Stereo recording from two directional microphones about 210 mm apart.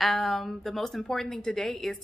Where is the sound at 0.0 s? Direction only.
Centre (ahead or behind).